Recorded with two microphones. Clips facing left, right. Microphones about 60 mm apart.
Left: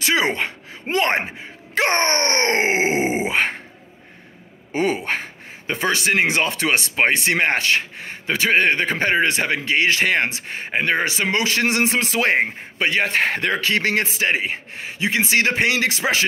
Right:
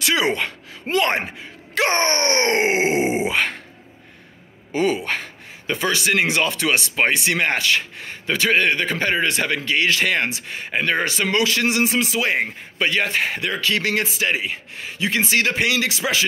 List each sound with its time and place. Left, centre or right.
0.0 s speech: left
4.7 s speech: left
12.4 s speech: left
13.1 s speech: left
13.6 s a man's voice: left